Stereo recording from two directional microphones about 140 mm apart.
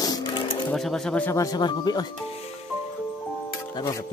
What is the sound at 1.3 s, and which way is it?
Speech, 25° left (ahead or behind).